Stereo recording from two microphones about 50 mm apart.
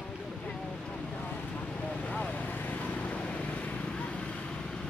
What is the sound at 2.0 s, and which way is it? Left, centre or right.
Vehicle, left.